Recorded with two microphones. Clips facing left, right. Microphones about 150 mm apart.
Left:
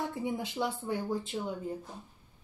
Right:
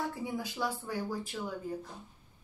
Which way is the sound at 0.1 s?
20° left (ahead or behind).